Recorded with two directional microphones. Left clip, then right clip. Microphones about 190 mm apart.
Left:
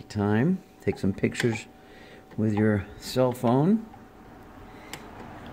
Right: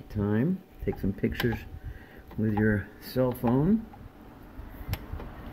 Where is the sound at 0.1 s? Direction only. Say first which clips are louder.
Left 4 dB; 20° left (ahead or behind).